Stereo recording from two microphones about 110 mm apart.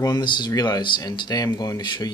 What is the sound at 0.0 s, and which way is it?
Speech, 40° left (ahead or behind).